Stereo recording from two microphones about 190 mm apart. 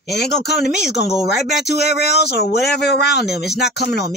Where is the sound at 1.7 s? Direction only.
60° left (ahead or behind).